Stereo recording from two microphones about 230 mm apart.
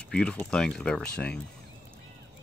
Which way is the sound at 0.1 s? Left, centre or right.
Centre.